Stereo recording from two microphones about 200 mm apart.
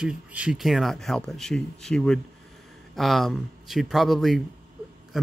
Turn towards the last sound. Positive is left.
turn(degrees=0)  # may be behind; listen again after turning